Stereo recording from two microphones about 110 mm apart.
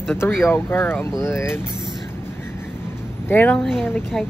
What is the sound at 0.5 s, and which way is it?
Speech, 20° left (ahead or behind).